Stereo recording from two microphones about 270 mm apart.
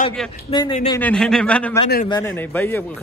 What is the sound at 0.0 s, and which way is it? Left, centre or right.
A man's voice, centre.